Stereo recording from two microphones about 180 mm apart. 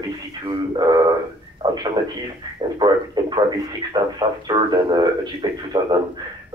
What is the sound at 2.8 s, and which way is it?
A man's voice, 25° right (ahead or behind).